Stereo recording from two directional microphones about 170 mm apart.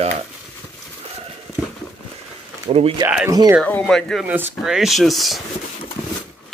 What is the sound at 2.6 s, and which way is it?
Speech, 35° right (ahead or behind).